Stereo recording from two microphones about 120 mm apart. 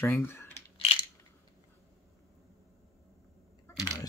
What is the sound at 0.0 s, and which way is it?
Speech, 20° left (ahead or behind).